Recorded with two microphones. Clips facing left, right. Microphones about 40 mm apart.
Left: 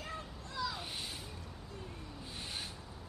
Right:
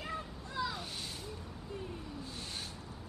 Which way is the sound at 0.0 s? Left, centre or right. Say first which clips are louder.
Right 3 dB; centre.